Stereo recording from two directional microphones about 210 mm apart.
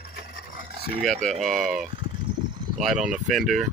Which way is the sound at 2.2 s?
20° right (ahead or behind).